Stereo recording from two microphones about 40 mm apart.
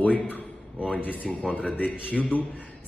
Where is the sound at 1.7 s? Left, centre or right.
Left.